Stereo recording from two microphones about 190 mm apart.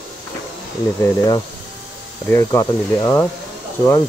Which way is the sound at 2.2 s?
15° left (ahead or behind).